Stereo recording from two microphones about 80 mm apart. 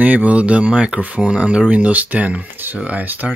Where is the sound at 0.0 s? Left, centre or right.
Centre.